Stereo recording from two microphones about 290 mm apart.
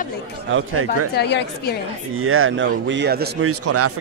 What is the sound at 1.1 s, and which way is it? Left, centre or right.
Speech, left.